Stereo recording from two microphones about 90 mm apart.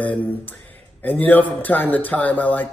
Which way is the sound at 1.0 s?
20° left (ahead or behind).